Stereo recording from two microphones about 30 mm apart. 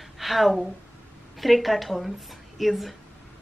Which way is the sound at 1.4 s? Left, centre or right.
Centre.